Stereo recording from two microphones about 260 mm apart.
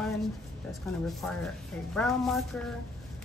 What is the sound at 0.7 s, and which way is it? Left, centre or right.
Speech, centre.